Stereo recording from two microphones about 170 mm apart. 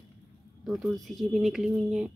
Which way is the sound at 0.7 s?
Centre (ahead or behind).